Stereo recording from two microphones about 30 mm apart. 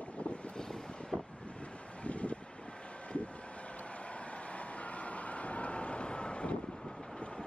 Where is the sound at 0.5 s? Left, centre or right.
Left.